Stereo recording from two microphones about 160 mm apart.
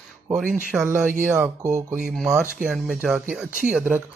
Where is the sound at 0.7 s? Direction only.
5° right (ahead or behind).